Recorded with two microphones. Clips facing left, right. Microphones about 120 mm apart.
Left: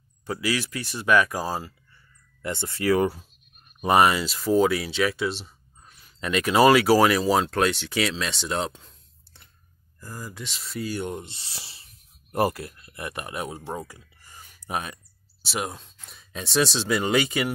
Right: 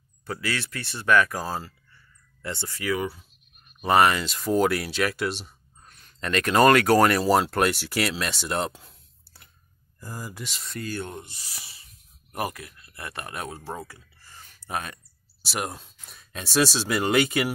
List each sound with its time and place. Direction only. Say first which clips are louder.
0.3 s speech: left 4 dB; 10° left (ahead or behind)
2.8 s speech: left 6 dB; 40° left (ahead or behind)
3.8 s speech: left 1 dB; 15° left (ahead or behind)
15.4 s speech: left 1 dB; centre (ahead or behind)